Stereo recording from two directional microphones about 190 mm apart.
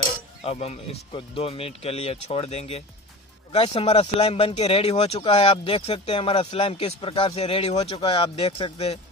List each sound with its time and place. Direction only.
0.4 s speech: 30° left (ahead or behind)